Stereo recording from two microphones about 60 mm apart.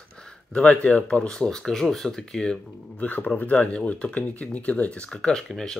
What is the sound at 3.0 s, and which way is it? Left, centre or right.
Speech, left.